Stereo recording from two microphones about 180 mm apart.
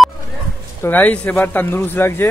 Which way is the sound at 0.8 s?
10° left (ahead or behind).